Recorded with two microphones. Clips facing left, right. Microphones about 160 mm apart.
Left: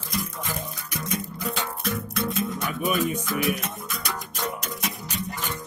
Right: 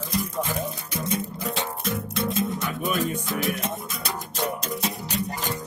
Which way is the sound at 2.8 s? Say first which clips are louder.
Left 2 dB; 10° left (ahead or behind).